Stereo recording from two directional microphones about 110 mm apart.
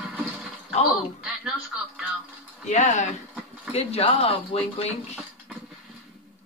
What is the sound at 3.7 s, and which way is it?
Speech, 65° left (ahead or behind).